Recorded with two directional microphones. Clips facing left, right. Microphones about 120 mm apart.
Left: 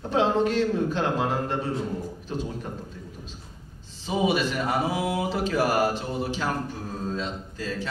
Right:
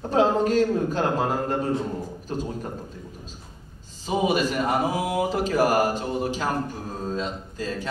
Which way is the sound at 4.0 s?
45° right (ahead or behind).